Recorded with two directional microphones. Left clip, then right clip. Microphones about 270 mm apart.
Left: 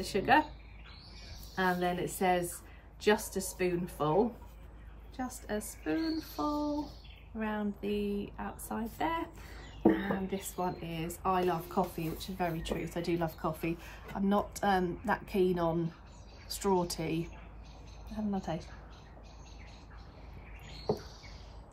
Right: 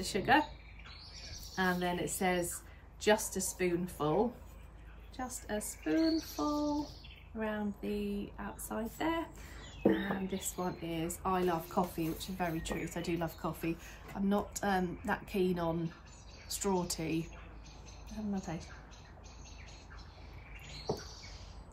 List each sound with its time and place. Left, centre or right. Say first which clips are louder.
0.0 s speech: left 2 dB; centre
1.5 s speech: left 2 dB; centre
18.5 s speech: left 6 dB; centre